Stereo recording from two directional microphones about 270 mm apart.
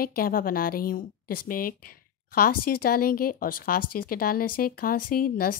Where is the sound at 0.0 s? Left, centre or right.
Left.